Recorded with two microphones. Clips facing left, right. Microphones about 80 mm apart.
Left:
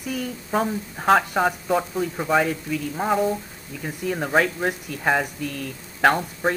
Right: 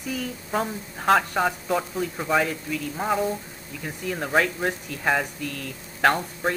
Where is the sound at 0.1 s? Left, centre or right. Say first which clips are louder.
Left 3 dB; centre.